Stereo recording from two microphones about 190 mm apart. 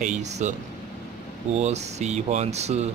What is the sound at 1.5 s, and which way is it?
Speech, 35° right (ahead or behind).